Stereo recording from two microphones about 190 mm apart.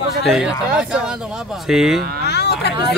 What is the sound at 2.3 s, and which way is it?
Speech, 60° left (ahead or behind).